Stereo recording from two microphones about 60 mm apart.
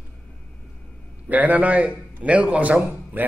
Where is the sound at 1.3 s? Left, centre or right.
Right.